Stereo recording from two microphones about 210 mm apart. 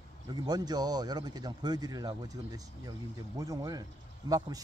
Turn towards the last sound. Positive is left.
turn(degrees=-15)  # may be behind; listen again after turning